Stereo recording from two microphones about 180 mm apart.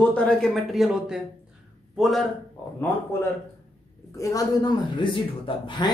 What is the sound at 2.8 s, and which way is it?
A man's voice, 15° left (ahead or behind).